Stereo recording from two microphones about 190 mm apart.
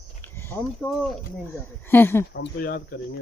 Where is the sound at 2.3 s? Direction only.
60° left (ahead or behind).